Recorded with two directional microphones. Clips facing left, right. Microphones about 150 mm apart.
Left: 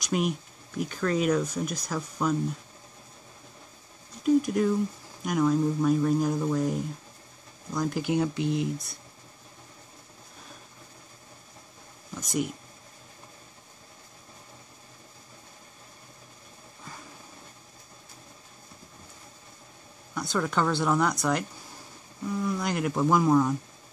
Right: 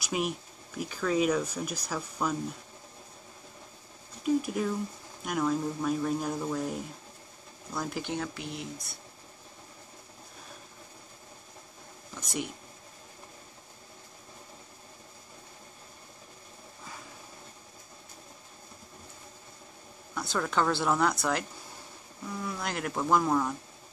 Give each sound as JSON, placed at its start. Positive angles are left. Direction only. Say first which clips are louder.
{"t": 0.0, "sound": "speech", "louder": "left 4 dB", "side_deg": -5}
{"t": 4.2, "sound": "speech", "louder": "left 5 dB", "side_deg": 0}
{"t": 8.1, "sound": "speech", "louder": "left 9 dB", "side_deg": 20}
{"t": 12.2, "sound": "speech", "louder": "left 6 dB", "side_deg": 0}
{"t": 20.2, "sound": "speech", "louder": "left 2 dB", "side_deg": 0}